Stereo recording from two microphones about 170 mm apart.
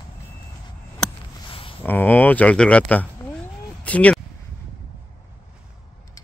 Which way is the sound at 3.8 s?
10° left (ahead or behind).